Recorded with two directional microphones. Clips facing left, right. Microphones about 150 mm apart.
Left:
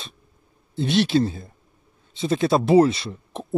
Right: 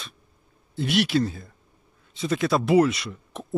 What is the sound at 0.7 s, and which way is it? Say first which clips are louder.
Speech: left 3 dB; 25° left (ahead or behind).